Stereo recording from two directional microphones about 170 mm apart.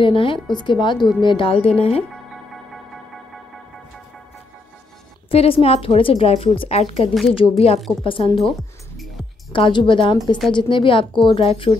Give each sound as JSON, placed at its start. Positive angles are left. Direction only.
{"t": 0.0, "sound": "a woman's voice", "side_deg": 30}
{"t": 2.3, "sound": "music", "side_deg": 0}
{"t": 5.3, "sound": "a woman's voice", "side_deg": 35}
{"t": 8.4, "sound": "music", "side_deg": 0}
{"t": 9.5, "sound": "a woman's voice", "side_deg": 30}